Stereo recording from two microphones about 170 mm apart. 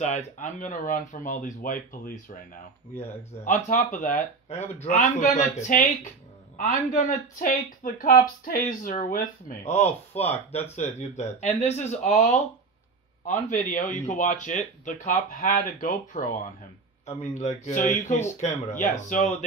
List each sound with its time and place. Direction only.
0.0 s speech: 45° left (ahead or behind)